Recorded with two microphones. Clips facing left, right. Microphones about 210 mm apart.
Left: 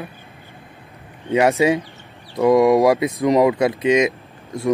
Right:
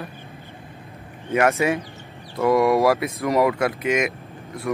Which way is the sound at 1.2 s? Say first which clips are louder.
Left 4 dB; 15° left (ahead or behind).